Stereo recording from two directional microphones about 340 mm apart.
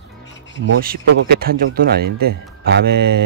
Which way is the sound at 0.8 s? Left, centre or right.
Right.